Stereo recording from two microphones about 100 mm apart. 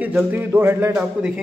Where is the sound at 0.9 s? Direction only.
10° right (ahead or behind).